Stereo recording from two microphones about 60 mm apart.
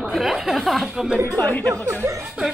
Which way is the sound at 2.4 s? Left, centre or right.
Right.